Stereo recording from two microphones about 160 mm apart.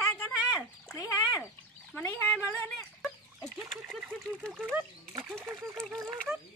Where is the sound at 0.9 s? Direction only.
15° left (ahead or behind).